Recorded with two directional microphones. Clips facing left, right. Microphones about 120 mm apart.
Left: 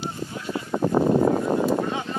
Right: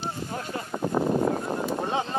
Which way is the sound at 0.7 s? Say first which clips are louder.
Left 5 dB; 65° left (ahead or behind).